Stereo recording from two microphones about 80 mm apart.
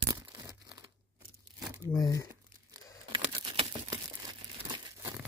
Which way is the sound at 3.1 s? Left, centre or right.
Right.